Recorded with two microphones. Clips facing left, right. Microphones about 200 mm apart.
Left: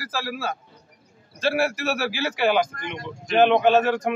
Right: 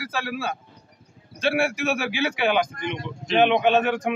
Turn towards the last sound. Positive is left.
turn(degrees=0)  # may be behind; listen again after turning